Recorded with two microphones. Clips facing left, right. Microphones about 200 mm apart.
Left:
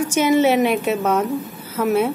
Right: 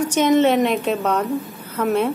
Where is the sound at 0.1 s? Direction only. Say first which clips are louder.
Even; 10° left (ahead or behind).